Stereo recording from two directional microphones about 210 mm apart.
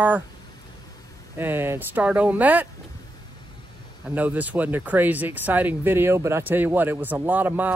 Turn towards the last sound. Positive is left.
turn(degrees=-10)  # may be behind; listen again after turning